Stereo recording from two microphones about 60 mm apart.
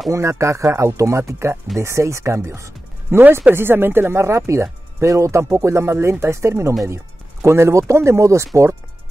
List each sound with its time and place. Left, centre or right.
0.1 s speech: right
3.1 s speech: right
4.5 s speech: right